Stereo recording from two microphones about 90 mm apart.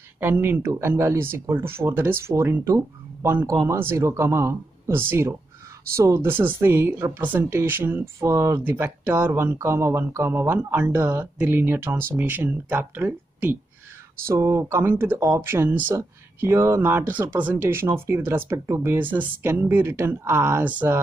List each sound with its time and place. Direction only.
0.2 s speech: 25° right (ahead or behind)
14.2 s speech: 35° right (ahead or behind)